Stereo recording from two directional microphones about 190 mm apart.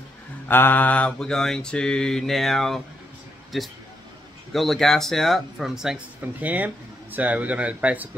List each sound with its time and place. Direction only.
0.5 s mantra: 10° left (ahead or behind)
4.5 s speech: centre (ahead or behind)